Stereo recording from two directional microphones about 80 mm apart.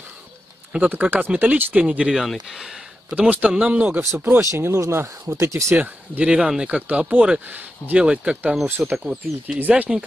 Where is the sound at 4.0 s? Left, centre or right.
Right.